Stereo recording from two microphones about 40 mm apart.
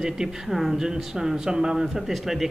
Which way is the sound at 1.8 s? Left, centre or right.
Centre.